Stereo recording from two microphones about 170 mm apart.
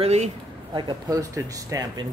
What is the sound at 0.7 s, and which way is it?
Speech, 25° right (ahead or behind).